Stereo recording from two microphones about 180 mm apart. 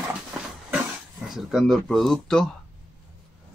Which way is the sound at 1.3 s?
Centre (ahead or behind).